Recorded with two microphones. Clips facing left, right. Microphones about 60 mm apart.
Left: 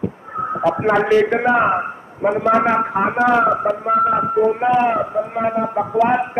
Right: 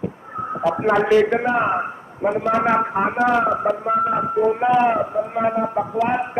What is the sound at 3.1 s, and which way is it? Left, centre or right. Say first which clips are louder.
Speech: left 4 dB; left.